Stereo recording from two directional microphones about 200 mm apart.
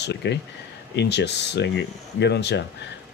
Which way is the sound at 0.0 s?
60° left (ahead or behind).